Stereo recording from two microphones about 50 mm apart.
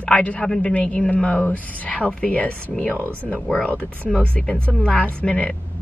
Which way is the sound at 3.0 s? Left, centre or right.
Right.